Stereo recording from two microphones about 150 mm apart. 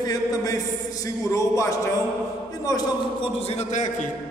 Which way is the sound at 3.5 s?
50° left (ahead or behind).